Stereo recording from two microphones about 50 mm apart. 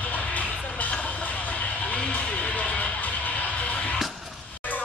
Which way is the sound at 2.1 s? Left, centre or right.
Left.